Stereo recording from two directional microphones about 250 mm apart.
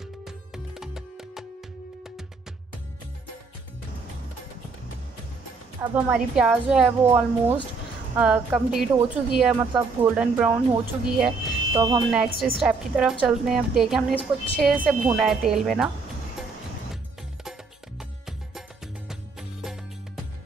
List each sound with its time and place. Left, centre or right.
0.7 s music: centre
5.8 s a woman's voice: centre
11.1 s music: centre
12.0 s a woman's voice: centre
17.5 s music: centre